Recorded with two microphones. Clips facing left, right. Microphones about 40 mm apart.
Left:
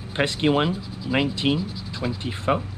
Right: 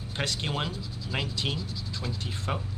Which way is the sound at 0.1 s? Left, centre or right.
Left.